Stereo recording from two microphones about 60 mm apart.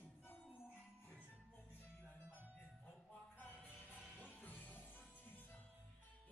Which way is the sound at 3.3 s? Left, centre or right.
Left.